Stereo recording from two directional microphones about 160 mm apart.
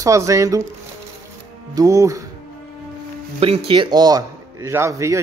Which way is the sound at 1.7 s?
20° right (ahead or behind).